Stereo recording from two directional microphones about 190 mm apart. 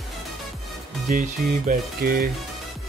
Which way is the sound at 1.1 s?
45° right (ahead or behind).